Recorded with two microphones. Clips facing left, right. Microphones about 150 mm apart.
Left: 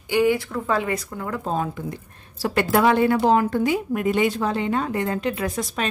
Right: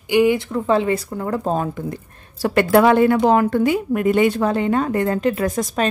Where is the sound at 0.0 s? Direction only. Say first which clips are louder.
Right 4 dB; 15° right (ahead or behind).